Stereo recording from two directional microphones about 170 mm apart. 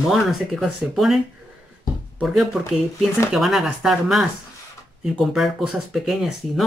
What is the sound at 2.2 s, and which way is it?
Speech, centre (ahead or behind).